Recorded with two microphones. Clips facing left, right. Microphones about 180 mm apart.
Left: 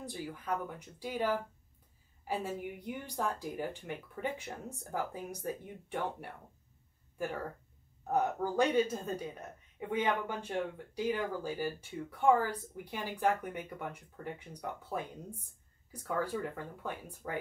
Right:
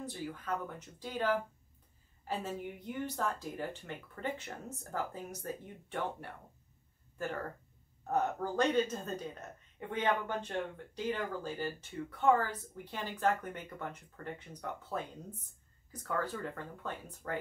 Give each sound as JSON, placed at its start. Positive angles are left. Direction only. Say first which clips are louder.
{"t": 0.0, "sound": "speech", "louder": "even", "side_deg": 15}
{"t": 8.1, "sound": "speech", "louder": "left 1 dB", "side_deg": 10}